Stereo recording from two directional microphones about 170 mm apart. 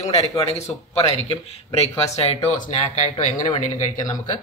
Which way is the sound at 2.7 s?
45° left (ahead or behind).